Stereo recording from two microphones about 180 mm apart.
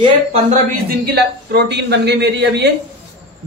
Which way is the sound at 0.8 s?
65° right (ahead or behind).